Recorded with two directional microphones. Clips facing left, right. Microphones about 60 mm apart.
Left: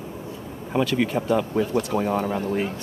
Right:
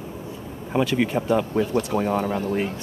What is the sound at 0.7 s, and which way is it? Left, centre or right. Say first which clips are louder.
Speech: right 1 dB; centre.